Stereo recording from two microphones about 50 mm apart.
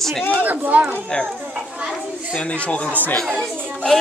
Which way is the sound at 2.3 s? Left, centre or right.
Left.